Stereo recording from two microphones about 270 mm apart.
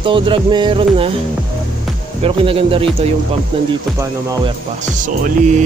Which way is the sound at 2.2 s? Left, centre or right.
Centre.